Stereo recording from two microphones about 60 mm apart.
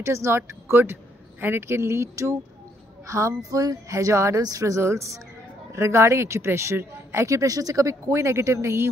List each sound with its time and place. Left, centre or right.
0.0 s speech: right
4.4 s speech: right
7.2 s speech: right